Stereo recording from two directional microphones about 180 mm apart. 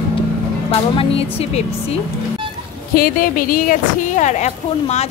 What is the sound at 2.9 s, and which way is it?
A woman's voice, 55° left (ahead or behind).